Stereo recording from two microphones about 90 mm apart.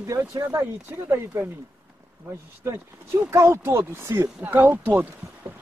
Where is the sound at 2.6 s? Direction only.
30° right (ahead or behind).